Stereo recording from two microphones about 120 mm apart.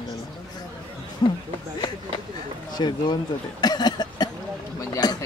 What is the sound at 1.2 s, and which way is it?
Speech, 35° left (ahead or behind).